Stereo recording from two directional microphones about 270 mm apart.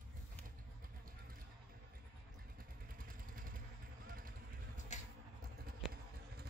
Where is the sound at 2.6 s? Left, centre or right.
Right.